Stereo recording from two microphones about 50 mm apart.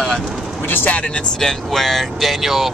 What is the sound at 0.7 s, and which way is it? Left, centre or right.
Speech, left.